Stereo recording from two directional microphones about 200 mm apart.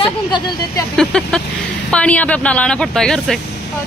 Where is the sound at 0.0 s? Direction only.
20° left (ahead or behind).